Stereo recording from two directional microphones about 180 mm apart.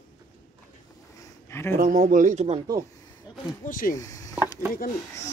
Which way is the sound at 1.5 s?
15° left (ahead or behind).